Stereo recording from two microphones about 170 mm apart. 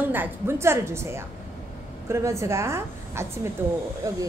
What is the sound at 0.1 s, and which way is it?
A woman's voice, 15° right (ahead or behind).